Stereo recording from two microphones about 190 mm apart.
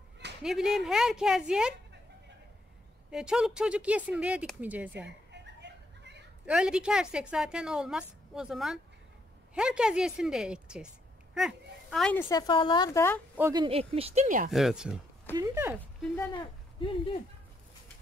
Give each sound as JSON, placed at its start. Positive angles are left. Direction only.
{"t": 0.4, "sound": "a woman's voice", "side_deg": -5}
{"t": 3.1, "sound": "speech", "side_deg": -5}
{"t": 5.3, "sound": "a sound", "side_deg": -65}
{"t": 6.4, "sound": "a woman's voice", "side_deg": -5}
{"t": 13.4, "sound": "speech", "side_deg": -20}
{"t": 13.7, "sound": "speech", "side_deg": -30}
{"t": 14.5, "sound": "a woman's voice", "side_deg": -5}
{"t": 15.3, "sound": "speech", "side_deg": -20}
{"t": 16.3, "sound": "speech", "side_deg": 25}